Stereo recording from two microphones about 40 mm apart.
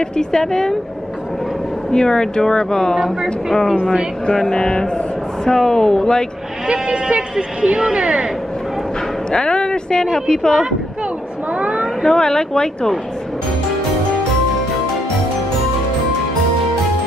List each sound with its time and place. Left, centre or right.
0.0 s speech: centre
1.9 s speech: centre
4.3 s a woman's voice: left
6.7 s speech: right
9.3 s a woman's voice: left
11.5 s a sound: right
12.1 s a woman's voice: centre